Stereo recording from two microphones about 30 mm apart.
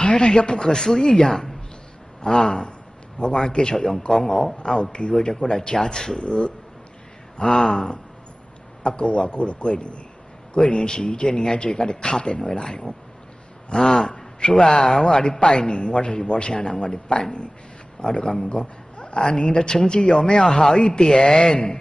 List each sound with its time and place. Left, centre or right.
0.0 s a man's voice: left
5.6 s speech: left
6.2 s speech: left
7.3 s speech: left
8.8 s speech: left
18.5 s a sound: left
19.1 s speech: left